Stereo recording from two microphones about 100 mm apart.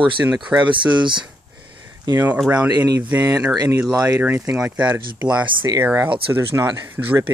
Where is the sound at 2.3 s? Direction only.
10° right (ahead or behind).